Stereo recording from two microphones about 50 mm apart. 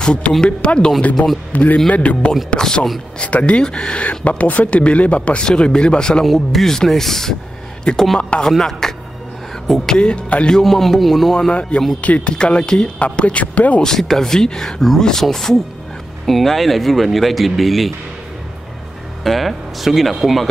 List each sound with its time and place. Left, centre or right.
0.0 s speech: left
1.1 s speech: centre
1.5 s a man's voice: left
2.5 s speech: centre
3.2 s speech: left
6.2 s a man's voice: centre
8.2 s speech: left
8.5 s a man's voice: centre
9.9 s speech: centre
10.6 s speech: centre
12.0 s speech: left
12.4 s speech: centre
13.8 s speech: centre
19.2 s speech: centre